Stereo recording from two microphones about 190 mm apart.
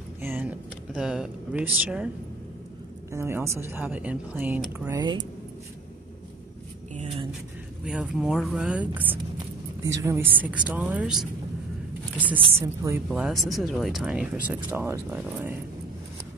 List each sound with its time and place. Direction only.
0.2 s a sound: 10° right (ahead or behind)
3.1 s speech: 15° right (ahead or behind)
4.9 s speech: 20° right (ahead or behind)
7.8 s speech: 5° right (ahead or behind)
12.6 s speech: 15° right (ahead or behind)